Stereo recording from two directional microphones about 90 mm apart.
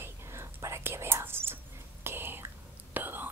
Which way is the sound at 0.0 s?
30° right (ahead or behind).